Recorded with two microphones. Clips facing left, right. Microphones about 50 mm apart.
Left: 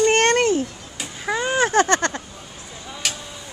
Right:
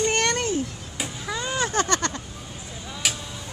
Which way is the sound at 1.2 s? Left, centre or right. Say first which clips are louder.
Left 7 dB; left.